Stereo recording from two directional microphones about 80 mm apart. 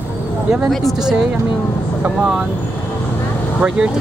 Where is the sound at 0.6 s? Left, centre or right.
Centre.